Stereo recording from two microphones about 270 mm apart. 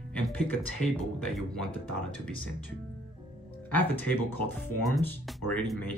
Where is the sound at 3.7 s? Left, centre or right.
Centre.